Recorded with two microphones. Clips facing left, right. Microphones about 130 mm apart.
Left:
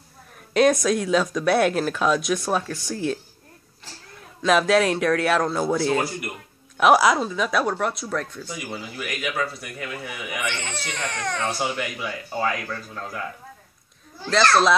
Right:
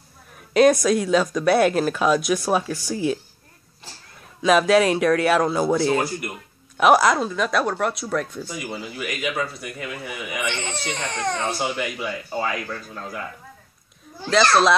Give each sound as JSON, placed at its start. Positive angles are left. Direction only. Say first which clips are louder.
{"t": 0.5, "sound": "speech", "louder": "right 3 dB", "side_deg": 0}
{"t": 4.4, "sound": "speech", "louder": "right 2 dB", "side_deg": 0}
{"t": 10.4, "sound": "speech", "louder": "right 3 dB", "side_deg": -25}
{"t": 11.6, "sound": "speech", "louder": "right 1 dB", "side_deg": 0}
{"t": 14.3, "sound": "speech", "louder": "right 1 dB", "side_deg": -5}